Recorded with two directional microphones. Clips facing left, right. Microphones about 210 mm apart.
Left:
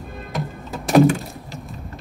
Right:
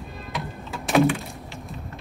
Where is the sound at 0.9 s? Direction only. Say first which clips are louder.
Left 5 dB; 40° left (ahead or behind).